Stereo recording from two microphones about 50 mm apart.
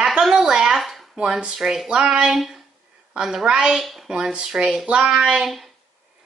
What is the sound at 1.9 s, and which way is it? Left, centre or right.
A child's voice, centre.